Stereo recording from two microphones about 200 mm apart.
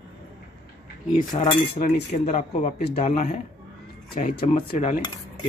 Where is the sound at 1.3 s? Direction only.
20° left (ahead or behind).